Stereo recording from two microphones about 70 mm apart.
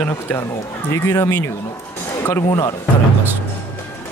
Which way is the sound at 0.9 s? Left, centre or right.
Left.